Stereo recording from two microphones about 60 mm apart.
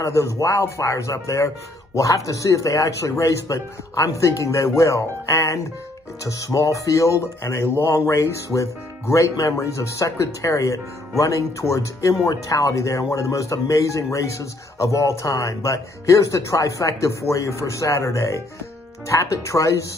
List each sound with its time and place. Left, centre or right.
0.1 s speech: left